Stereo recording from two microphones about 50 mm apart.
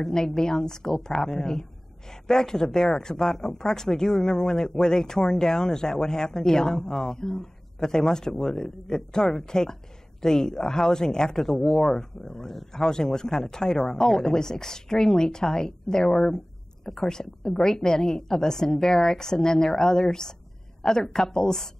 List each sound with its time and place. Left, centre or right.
0.0 s speech: centre